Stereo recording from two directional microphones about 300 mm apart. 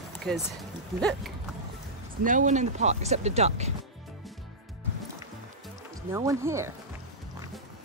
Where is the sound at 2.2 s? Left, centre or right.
Right.